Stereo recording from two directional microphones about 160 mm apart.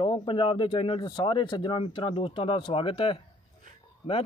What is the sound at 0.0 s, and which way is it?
Speech, 30° left (ahead or behind).